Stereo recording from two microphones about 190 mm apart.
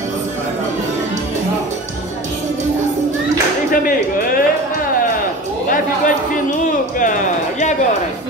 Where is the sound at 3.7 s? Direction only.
45° left (ahead or behind).